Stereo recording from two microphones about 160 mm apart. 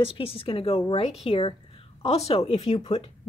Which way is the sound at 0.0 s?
35° left (ahead or behind).